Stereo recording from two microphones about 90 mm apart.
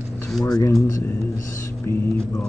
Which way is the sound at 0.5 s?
45° left (ahead or behind).